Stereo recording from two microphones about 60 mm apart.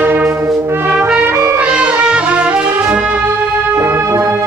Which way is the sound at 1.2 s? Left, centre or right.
Right.